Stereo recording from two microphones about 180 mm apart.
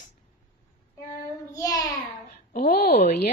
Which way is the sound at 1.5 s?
20° left (ahead or behind).